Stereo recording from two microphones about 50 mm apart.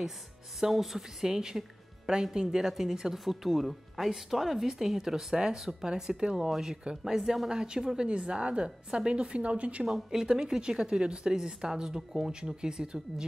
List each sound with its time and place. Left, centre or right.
0.6 s a woman's voice: centre; by 9.8 s right
9.8 s speech: centre